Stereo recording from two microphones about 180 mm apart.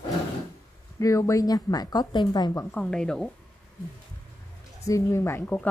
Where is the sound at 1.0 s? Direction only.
15° left (ahead or behind).